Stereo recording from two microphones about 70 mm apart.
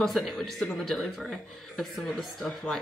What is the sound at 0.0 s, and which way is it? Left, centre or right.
Speech, centre.